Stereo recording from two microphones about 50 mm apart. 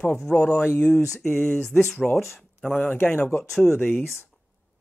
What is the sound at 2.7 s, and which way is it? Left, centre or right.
Speech, left.